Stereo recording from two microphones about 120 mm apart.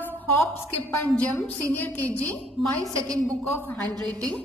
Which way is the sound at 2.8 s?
30° right (ahead or behind).